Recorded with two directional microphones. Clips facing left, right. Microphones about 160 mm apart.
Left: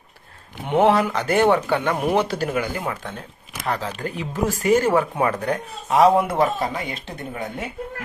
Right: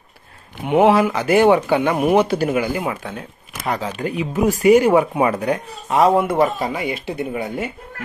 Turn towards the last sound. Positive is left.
turn(degrees=-5)  # may be behind; listen again after turning